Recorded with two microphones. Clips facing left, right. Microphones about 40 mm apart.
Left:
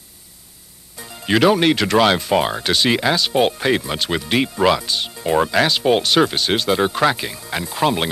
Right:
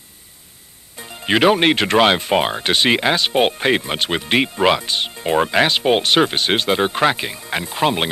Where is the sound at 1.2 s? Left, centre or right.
Right.